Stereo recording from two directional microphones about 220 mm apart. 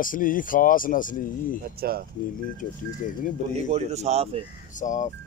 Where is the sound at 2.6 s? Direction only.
35° left (ahead or behind).